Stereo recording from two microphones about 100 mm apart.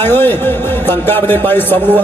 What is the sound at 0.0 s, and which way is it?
A man's voice, 20° left (ahead or behind).